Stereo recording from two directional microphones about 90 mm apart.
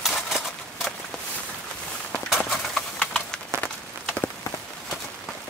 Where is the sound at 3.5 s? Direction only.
15° left (ahead or behind).